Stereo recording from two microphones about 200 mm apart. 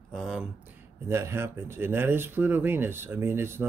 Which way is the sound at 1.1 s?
15° right (ahead or behind).